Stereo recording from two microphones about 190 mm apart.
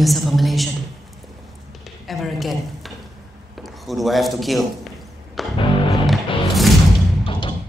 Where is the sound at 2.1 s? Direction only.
Centre (ahead or behind).